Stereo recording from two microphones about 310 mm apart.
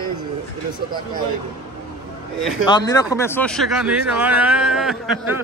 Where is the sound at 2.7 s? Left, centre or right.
Centre.